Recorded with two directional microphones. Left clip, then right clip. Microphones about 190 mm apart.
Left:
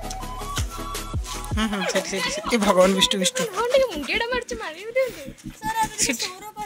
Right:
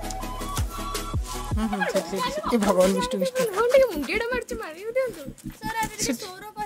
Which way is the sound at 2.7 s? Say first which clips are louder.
Left 5 dB; 5° left (ahead or behind).